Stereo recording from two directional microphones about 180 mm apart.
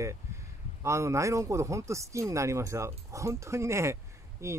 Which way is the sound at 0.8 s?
15° right (ahead or behind).